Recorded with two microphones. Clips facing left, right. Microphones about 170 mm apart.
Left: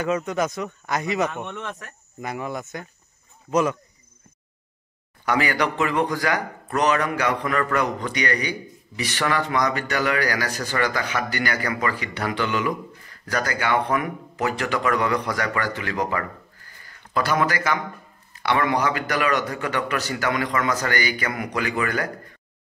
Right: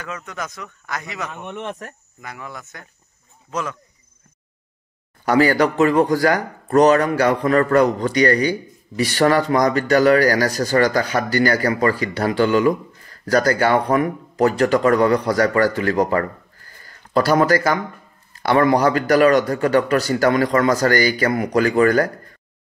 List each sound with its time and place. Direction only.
0.0 s a man's voice: 20° left (ahead or behind)
1.5 s speech: 25° right (ahead or behind)
2.2 s a man's voice: 20° left (ahead or behind)
5.2 s speech: 35° right (ahead or behind)